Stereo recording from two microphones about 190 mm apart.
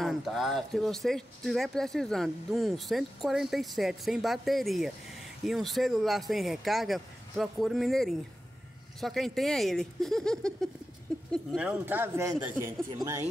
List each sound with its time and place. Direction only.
0.0 s speech: centre (ahead or behind)
11.1 s a sound: 5° left (ahead or behind)
11.5 s speech: 10° right (ahead or behind)